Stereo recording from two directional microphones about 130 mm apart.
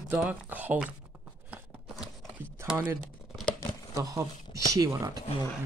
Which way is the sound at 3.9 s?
20° right (ahead or behind).